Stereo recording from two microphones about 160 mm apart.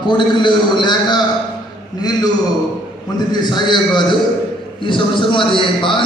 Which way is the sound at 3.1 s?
25° left (ahead or behind).